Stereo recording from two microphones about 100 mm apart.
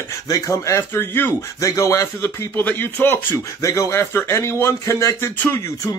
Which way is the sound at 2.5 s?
20° left (ahead or behind).